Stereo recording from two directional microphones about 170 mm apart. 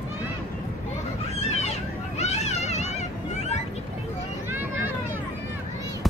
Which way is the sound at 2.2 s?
40° left (ahead or behind).